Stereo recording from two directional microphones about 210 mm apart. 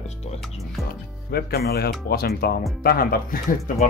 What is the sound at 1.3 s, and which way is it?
Speech, 45° left (ahead or behind).